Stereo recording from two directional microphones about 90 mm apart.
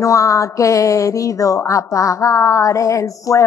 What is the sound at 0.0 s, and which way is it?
A woman's voice, 35° left (ahead or behind).